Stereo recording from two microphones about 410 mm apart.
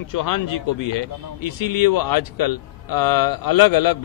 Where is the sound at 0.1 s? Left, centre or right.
Left.